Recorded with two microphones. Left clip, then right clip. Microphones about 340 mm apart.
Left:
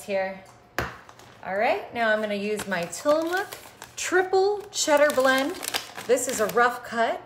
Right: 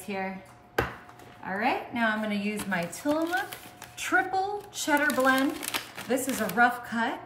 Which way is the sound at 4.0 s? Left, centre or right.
Left.